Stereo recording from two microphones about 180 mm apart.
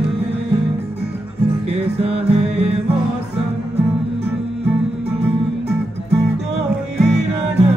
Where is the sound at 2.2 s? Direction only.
35° right (ahead or behind).